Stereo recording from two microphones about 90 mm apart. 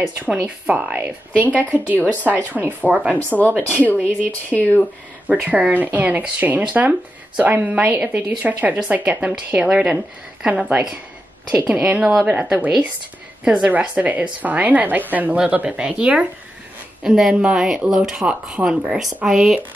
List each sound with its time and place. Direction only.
0.0 s a woman's voice: 10° right (ahead or behind)
2.0 s speech: 20° left (ahead or behind)
2.2 s a woman's voice: 15° right (ahead or behind)
3.3 s speech: 5° right (ahead or behind)
3.6 s speech: 15° left (ahead or behind)
5.3 s a woman's voice: 15° right (ahead or behind)